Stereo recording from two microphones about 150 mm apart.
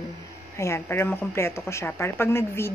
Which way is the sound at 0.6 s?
15° left (ahead or behind).